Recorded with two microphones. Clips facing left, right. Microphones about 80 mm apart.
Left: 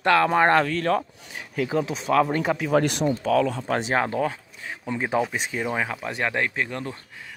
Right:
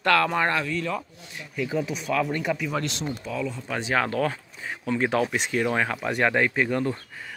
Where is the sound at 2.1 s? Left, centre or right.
Left.